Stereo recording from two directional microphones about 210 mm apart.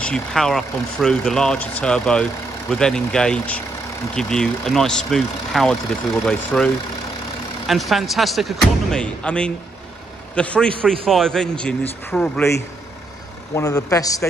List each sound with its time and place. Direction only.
0.0 s speech: 5° left (ahead or behind)
13.6 s speech: 15° left (ahead or behind)